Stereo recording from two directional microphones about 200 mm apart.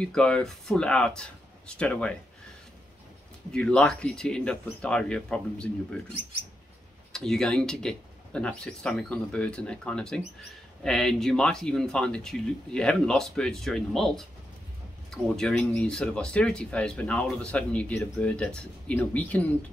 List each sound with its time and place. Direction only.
0.0 s speech: 5° left (ahead or behind)
3.5 s speech: 5° left (ahead or behind)
7.1 s speech: 5° left (ahead or behind)